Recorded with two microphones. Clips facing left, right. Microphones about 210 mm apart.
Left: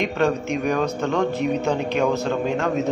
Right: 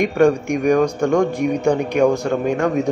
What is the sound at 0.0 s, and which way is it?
A man's voice, 15° right (ahead or behind).